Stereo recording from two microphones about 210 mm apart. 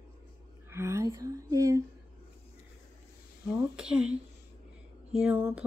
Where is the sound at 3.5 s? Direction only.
5° right (ahead or behind).